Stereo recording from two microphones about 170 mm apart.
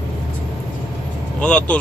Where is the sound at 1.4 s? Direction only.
5° left (ahead or behind).